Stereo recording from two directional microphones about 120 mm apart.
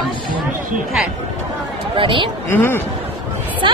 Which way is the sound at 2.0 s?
45° right (ahead or behind).